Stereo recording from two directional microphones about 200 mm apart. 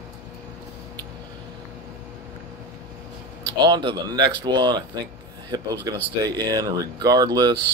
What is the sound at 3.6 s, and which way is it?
Speech, 20° right (ahead or behind).